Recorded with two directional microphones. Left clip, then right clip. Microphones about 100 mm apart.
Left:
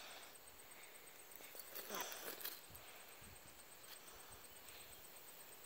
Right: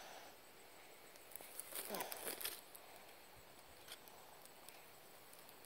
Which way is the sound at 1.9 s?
5° left (ahead or behind).